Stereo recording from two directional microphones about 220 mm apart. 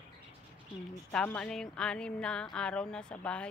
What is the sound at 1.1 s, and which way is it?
Speech, 5° left (ahead or behind).